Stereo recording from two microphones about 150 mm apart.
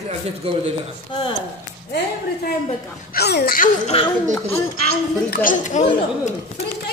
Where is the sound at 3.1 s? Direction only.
90° left.